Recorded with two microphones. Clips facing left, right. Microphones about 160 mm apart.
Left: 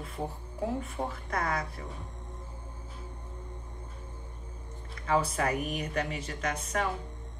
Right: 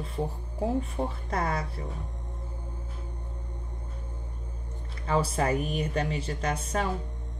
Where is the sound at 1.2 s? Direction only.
30° right (ahead or behind).